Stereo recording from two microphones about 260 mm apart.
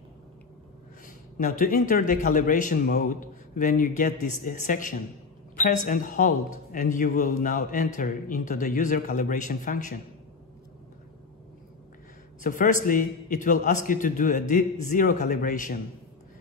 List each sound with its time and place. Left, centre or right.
1.0 s a man's voice: left
12.4 s a man's voice: left